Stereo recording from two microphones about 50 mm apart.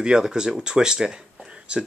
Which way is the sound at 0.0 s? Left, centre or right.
Centre.